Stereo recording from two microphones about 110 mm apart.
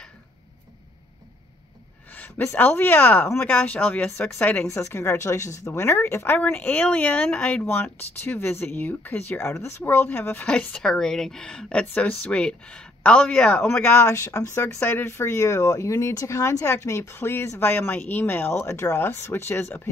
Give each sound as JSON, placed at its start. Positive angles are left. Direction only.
{"t": 2.1, "sound": "speech", "side_deg": 15}
{"t": 4.6, "sound": "speech", "side_deg": 25}